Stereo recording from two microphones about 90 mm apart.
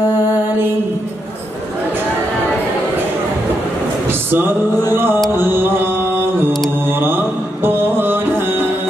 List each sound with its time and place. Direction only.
4.1 s a sound: 25° right (ahead or behind)
5.3 s mantra: 25° right (ahead or behind)
6.9 s music: 25° right (ahead or behind)